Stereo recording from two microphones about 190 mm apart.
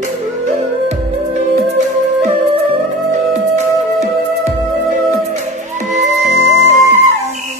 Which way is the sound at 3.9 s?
35° right (ahead or behind).